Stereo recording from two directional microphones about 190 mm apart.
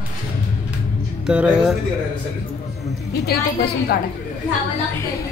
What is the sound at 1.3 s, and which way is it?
Speech, 5° right (ahead or behind).